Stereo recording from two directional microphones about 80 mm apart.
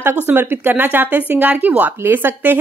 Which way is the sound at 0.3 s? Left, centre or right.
Right.